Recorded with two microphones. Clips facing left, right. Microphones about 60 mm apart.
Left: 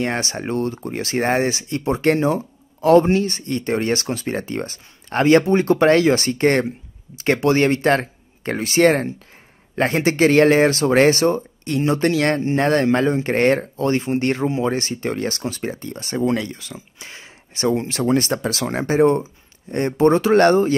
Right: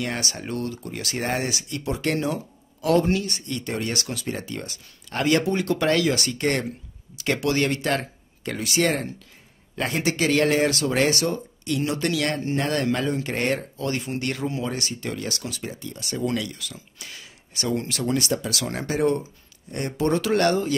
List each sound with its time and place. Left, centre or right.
0.0 s speech: left